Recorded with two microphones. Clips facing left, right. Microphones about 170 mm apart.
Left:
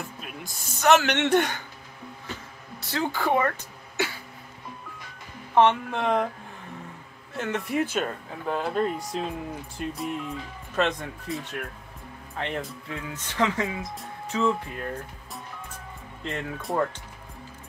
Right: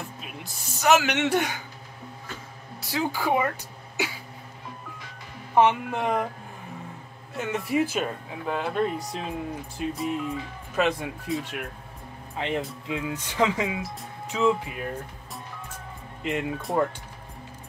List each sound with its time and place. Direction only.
0.2 s speech: 5° right (ahead or behind)
2.9 s speech: 10° right (ahead or behind)
5.5 s speech: 5° right (ahead or behind)
7.3 s speech: centre (ahead or behind)
12.4 s speech: 15° right (ahead or behind)
16.2 s speech: 15° right (ahead or behind)
16.7 s speech: centre (ahead or behind)